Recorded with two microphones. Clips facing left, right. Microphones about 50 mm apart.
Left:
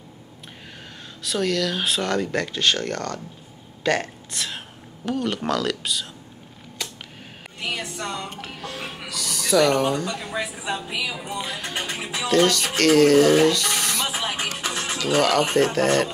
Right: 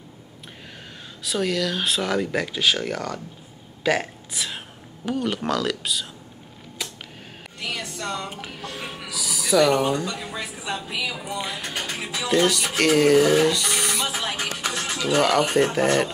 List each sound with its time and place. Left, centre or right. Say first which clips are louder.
1.2 s speech: left 1 dB; centre
6.8 s a sound: even; centre
7.6 s music: left 1 dB; left
8.5 s music: even; centre
9.1 s speech: even; centre
10.3 s a woman's voice: left 3 dB; centre
11.4 s speech: even; centre
11.7 s speech: left 1 dB; centre
12.3 s speech: left 2 dB; centre
14.1 s music: left 1 dB; left
15.1 s speech: even; centre